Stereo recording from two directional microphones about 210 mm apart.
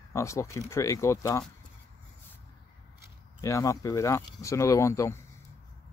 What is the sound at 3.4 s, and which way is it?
Speech, 15° left (ahead or behind).